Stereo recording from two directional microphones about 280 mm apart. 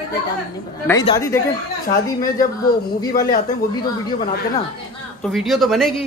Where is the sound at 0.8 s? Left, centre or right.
Centre.